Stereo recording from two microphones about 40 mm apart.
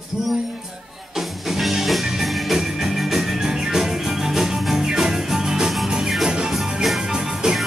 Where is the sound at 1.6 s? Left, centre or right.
Centre.